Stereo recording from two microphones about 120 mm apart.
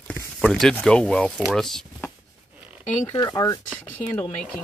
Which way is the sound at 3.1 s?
35° left (ahead or behind).